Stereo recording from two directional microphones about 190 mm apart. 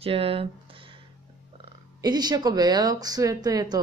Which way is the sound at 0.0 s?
30° right (ahead or behind).